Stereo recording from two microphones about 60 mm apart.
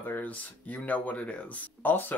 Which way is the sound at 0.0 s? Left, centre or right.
Left.